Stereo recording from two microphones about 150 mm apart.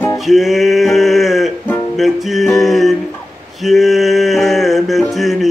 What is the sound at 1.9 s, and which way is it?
Music, centre (ahead or behind).